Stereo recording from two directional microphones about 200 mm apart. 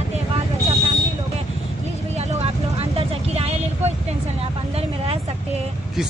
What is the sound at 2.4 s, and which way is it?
Vehicle, 30° right (ahead or behind).